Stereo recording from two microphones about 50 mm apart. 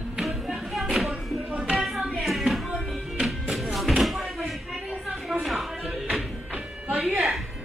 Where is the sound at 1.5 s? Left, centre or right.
Right.